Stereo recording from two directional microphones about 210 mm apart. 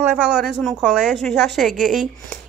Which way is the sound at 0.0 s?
5° right (ahead or behind).